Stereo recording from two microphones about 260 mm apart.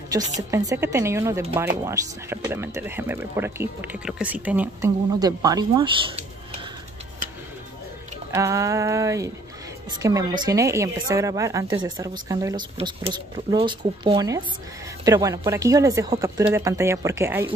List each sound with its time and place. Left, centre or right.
0.1 s speech: centre
8.3 s speech: centre